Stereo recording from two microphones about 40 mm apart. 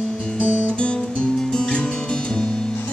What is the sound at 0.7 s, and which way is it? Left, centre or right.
Music, left.